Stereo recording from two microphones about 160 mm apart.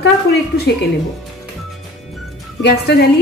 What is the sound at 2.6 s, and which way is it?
Speech, 90° left.